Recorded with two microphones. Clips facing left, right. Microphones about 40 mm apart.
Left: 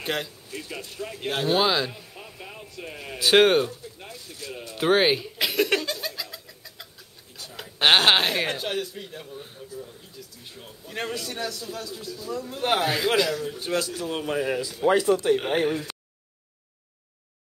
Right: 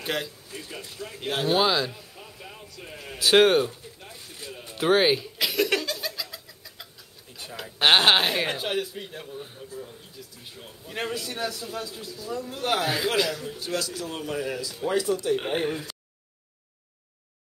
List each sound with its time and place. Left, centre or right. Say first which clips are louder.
0.0 s speech: left 1 dB; centre
0.7 s speech: left 3 dB; left
1.2 s a man's voice: even; centre; by 2.6 s left
3.1 s speech: even; centre
4.7 s chuckle: even; centre
6.2 s bird: left 1 dB; centre
7.4 s a sound: right 2 dB; right
7.8 s a man's voice: even; centre
12.5 s speech: left 2 dB; centre
12.8 s speech: left 2 dB; centre
13.6 s speech: left 3 dB; left
15.3 s speech: left 3 dB; centre